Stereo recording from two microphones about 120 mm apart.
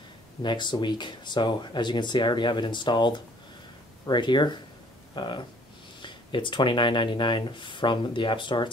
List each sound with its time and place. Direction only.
0.4 s speech: 40° left (ahead or behind)